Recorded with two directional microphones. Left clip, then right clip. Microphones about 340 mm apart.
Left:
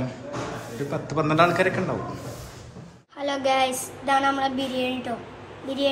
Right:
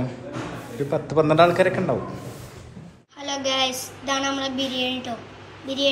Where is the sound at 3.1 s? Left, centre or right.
Centre.